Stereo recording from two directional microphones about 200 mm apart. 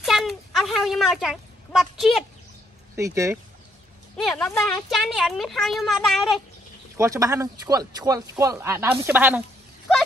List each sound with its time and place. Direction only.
0.0 s a sound: centre (ahead or behind)
3.0 s speech: 15° right (ahead or behind)
4.3 s a woman's voice: centre (ahead or behind)
7.0 s speech: 15° right (ahead or behind)